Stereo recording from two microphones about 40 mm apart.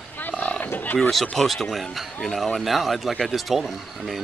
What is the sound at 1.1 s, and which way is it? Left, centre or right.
A man's voice, centre.